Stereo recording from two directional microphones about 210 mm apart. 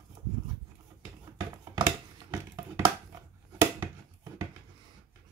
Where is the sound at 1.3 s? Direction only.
15° right (ahead or behind).